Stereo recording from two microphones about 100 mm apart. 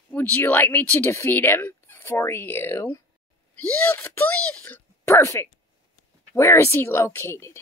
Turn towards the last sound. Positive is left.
turn(degrees=25)  # may be behind; listen again after turning